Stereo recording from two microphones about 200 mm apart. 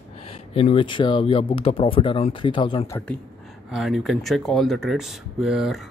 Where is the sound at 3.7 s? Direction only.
Centre (ahead or behind).